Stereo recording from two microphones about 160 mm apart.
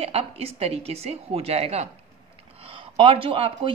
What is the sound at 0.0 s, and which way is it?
Speech, 40° right (ahead or behind).